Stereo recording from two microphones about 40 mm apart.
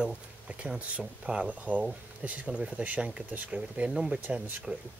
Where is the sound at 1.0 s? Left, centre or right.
Right.